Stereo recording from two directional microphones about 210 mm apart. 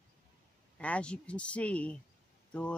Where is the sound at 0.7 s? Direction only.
5° left (ahead or behind).